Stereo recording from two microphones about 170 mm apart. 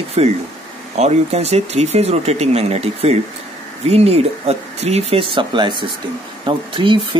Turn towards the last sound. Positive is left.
turn(degrees=-30)  # may be behind; listen again after turning